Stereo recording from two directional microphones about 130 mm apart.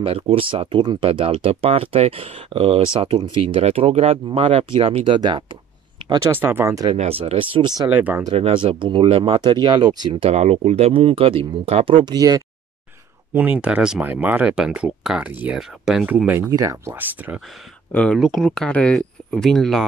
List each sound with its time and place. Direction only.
0.0 s speech: 45° right (ahead or behind)
6.3 s speech: 15° right (ahead or behind)
7.0 s speech: 50° right (ahead or behind)
7.9 s speech: 15° right (ahead or behind)
8.3 s speech: 50° right (ahead or behind); by 10.1 s 30° right (ahead or behind)
10.2 s speech: 55° right (ahead or behind); by 12.4 s 30° right (ahead or behind)
13.3 s speech: 15° right (ahead or behind)
16.4 s speech: 25° right (ahead or behind)
17.9 s speech: 10° left (ahead or behind)